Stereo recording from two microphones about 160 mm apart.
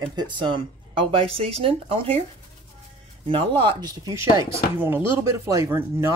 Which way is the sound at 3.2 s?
30° right (ahead or behind).